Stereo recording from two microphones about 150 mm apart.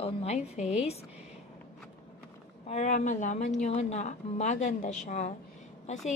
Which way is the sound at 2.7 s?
50° left (ahead or behind).